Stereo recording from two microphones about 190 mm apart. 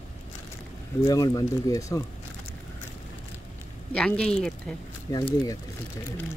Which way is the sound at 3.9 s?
5° left (ahead or behind).